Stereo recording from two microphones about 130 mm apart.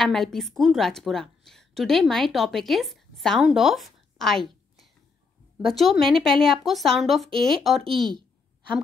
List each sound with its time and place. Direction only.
0.0 s a woman's voice: 5° left (ahead or behind)